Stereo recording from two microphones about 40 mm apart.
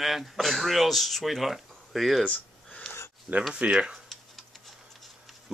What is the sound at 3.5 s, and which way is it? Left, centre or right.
Speech, right.